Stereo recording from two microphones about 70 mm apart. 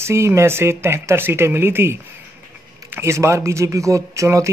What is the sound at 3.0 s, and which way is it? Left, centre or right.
Speech, right.